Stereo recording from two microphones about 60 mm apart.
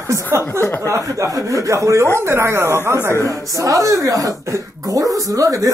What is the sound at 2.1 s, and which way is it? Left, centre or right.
Speech, right.